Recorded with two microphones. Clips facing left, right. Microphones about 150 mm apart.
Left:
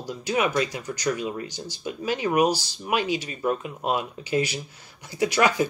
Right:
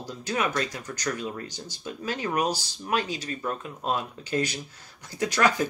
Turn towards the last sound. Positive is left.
turn(degrees=10)  # may be behind; listen again after turning